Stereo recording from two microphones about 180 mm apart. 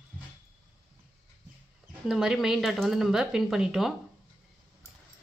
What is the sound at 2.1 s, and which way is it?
A woman's voice, centre (ahead or behind).